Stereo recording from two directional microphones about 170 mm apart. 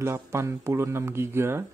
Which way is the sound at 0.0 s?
15° right (ahead or behind).